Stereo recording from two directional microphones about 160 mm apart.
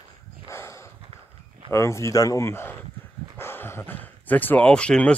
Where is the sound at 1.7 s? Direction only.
15° left (ahead or behind).